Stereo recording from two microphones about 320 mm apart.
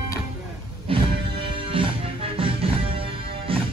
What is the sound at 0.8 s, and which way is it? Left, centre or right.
Music, centre.